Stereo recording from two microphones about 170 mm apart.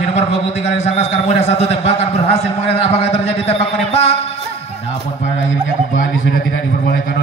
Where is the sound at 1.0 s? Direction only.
40° left (ahead or behind).